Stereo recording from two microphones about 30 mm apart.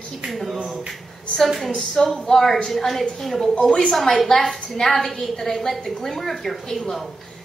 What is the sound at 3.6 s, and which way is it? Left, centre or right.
Speech, left.